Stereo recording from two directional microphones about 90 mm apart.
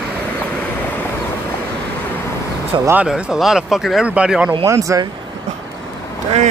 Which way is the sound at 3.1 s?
10° right (ahead or behind).